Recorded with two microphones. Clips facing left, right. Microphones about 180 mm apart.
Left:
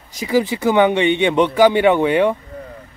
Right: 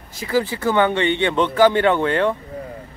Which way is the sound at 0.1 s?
15° left (ahead or behind).